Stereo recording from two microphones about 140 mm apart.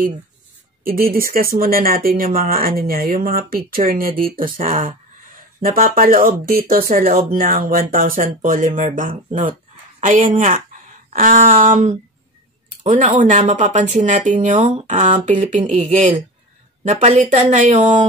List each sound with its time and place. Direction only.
0.8 s speech: 90° right; by 18.0 s 60° right (ahead or behind)